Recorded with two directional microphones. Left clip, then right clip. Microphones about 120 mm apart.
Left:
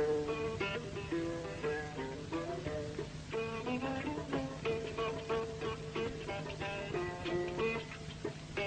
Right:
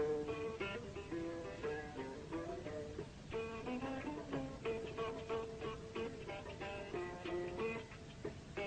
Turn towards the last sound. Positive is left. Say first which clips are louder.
# left 6 dB
turn(degrees=-40)  # may be behind; listen again after turning